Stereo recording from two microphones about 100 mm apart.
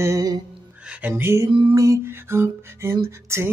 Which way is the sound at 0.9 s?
15° right (ahead or behind).